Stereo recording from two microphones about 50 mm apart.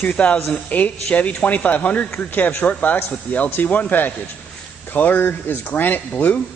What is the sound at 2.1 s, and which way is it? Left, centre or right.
Speech, left.